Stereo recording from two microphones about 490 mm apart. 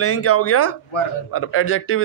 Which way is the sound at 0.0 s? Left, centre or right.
Left.